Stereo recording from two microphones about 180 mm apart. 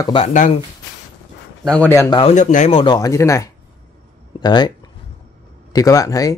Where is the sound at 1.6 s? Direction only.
10° left (ahead or behind).